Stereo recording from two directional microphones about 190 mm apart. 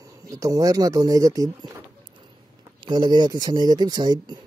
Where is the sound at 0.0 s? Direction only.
15° right (ahead or behind).